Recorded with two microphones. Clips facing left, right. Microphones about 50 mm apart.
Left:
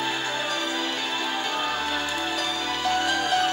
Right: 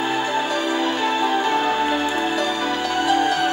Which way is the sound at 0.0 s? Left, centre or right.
Right.